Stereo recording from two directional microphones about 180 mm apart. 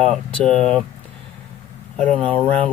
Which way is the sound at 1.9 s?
5° left (ahead or behind).